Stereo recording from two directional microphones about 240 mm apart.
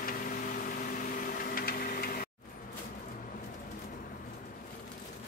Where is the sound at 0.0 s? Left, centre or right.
Left.